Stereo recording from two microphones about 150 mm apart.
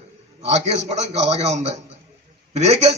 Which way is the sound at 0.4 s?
45° right (ahead or behind).